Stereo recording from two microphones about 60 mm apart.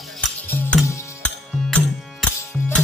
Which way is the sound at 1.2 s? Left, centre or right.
Centre.